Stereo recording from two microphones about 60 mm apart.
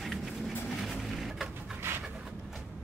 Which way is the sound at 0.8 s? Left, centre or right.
Centre.